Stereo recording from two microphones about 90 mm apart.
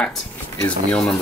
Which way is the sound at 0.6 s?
10° left (ahead or behind).